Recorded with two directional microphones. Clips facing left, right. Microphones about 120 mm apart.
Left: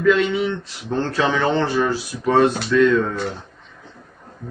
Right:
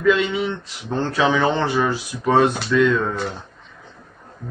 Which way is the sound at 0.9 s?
15° right (ahead or behind).